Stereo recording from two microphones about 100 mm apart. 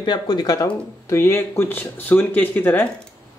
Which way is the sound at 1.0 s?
30° left (ahead or behind).